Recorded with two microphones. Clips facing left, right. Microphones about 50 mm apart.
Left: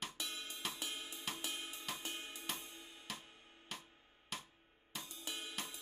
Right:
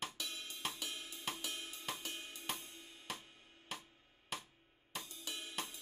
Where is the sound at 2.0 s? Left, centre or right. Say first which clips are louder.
Even; left.